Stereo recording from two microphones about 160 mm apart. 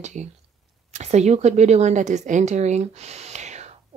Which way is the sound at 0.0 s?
45° right (ahead or behind).